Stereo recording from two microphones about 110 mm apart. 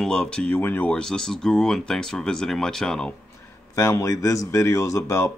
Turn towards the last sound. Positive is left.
turn(degrees=25)  # may be behind; listen again after turning